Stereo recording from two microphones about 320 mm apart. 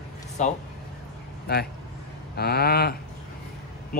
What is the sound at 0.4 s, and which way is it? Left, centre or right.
Speech, left.